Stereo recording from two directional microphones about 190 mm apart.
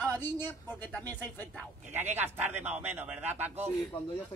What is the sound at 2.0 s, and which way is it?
Speech, 35° right (ahead or behind).